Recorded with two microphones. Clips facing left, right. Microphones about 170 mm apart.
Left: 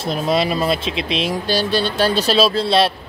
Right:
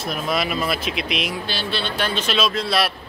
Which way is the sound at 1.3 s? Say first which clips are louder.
Left 8 dB; 40° left (ahead or behind).